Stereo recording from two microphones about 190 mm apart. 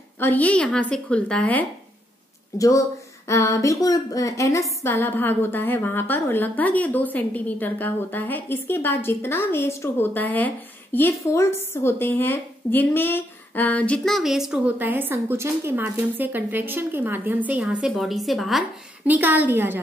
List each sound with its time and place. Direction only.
0.2 s a woman's voice: 10° left (ahead or behind); by 19.8 s 10° right (ahead or behind)